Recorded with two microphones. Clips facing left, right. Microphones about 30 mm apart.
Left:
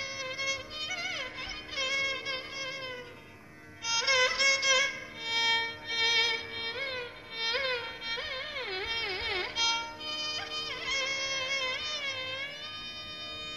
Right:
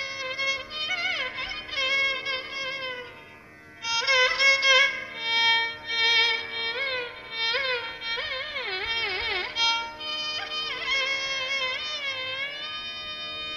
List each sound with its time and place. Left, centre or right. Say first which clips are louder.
0.0 s music: right 6 dB; right